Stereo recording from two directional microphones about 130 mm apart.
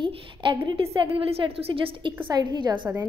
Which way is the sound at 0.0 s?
40° right (ahead or behind).